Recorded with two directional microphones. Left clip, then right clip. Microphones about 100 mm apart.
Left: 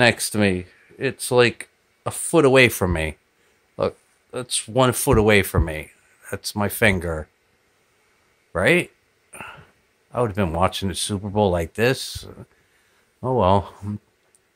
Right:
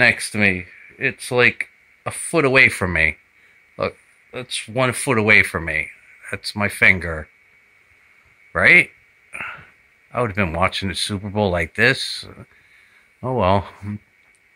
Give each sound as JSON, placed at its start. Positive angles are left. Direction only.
{"t": 0.0, "sound": "speech", "side_deg": 60}
{"t": 2.5, "sound": "speech", "side_deg": 35}
{"t": 4.3, "sound": "speech", "side_deg": 75}
{"t": 5.0, "sound": "speech", "side_deg": 40}
{"t": 8.5, "sound": "speech", "side_deg": 20}
{"t": 9.3, "sound": "a sound", "side_deg": 20}
{"t": 10.1, "sound": "speech", "side_deg": 20}